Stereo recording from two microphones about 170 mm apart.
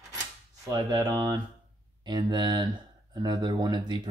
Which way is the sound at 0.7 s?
20° right (ahead or behind).